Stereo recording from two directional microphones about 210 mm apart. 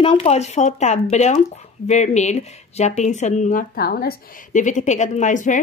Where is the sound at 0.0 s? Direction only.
25° left (ahead or behind).